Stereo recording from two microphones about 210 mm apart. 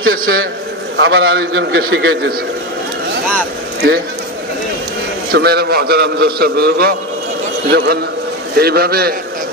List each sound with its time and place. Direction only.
0.0 s speech: 80° right
0.9 s a man's voice: 70° right (ahead or behind)
1.4 s a man's voice: 50° right (ahead or behind)
5.3 s a man's voice: 50° right (ahead or behind)